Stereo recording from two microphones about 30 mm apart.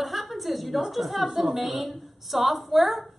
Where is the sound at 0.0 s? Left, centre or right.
Centre.